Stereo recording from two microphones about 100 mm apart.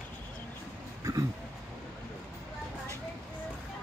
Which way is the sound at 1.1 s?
35° right (ahead or behind).